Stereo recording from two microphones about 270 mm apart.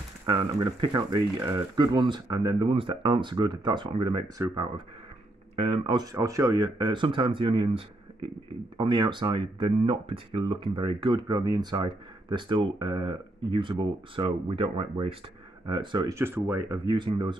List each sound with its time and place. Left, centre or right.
0.3 s speech: centre